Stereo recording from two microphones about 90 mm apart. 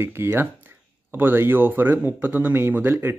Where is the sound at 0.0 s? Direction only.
25° right (ahead or behind).